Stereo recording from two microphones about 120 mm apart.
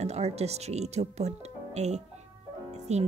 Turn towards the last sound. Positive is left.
turn(degrees=-65)  # may be behind; listen again after turning